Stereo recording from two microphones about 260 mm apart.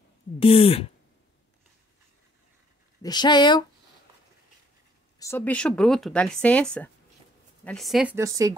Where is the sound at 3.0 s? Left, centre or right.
Centre.